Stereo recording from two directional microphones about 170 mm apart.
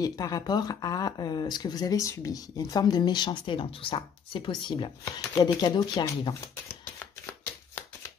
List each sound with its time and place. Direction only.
0.0 s speech: 20° left (ahead or behind)